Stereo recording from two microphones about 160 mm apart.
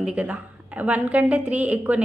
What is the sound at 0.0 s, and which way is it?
A woman's voice, 10° right (ahead or behind).